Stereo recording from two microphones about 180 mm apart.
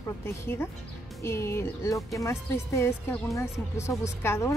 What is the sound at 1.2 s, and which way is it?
Speech, 15° left (ahead or behind).